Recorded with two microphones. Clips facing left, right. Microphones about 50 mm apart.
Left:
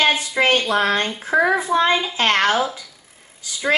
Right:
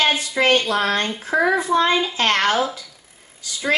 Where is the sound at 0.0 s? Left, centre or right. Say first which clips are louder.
Left 1 dB; centre.